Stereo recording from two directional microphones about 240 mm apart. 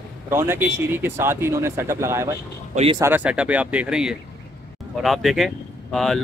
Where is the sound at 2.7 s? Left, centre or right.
Right.